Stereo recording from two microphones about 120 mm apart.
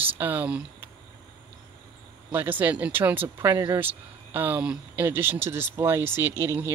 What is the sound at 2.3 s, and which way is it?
Speech, 15° right (ahead or behind).